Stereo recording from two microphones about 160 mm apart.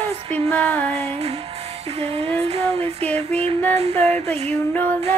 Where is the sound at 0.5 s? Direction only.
10° left (ahead or behind).